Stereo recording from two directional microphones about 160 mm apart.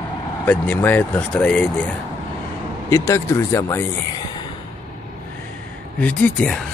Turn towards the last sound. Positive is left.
turn(degrees=10)  # may be behind; listen again after turning